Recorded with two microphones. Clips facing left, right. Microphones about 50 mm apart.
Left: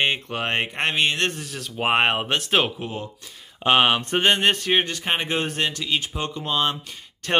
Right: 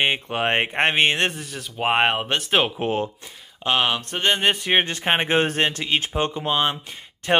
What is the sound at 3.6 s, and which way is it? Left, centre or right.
Speech, centre.